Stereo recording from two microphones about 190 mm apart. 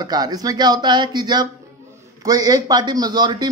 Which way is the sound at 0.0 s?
20° right (ahead or behind).